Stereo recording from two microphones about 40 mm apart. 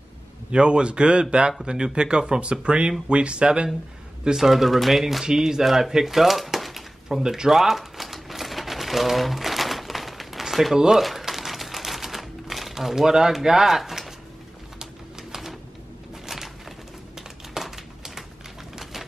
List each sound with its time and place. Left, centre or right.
0.5 s speech: right
4.4 s speech: centre
5.2 s speech: centre
5.7 s a sound: centre
11.0 s typewriter: centre
14.8 s typing: centre
17.6 s crumpling: centre
18.8 s a sound: centre